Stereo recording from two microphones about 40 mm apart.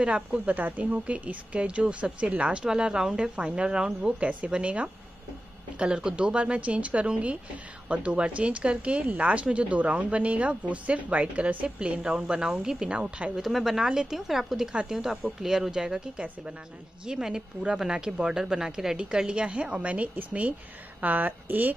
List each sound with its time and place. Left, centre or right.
0.0 s speech: right
0.6 s speech: right
2.6 s a woman's voice: centre
13.4 s speech: centre
17.0 s a woman's voice: centre; by 20.5 s right
21.0 s a woman's voice: right